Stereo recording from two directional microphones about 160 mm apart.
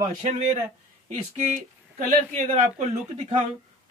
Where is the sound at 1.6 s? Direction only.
50° right (ahead or behind).